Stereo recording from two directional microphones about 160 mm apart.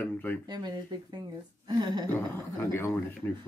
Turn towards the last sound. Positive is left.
turn(degrees=15)  # may be behind; listen again after turning